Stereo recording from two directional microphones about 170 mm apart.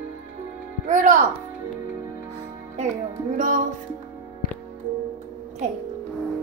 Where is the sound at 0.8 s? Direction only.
50° right (ahead or behind).